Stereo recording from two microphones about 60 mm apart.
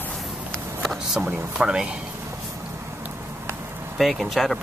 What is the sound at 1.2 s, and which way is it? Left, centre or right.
Speech, centre.